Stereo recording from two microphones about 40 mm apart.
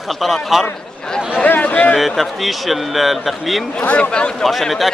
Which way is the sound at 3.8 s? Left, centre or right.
Left.